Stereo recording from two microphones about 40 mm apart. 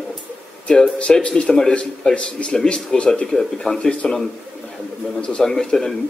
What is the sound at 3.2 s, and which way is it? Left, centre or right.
Speech, centre.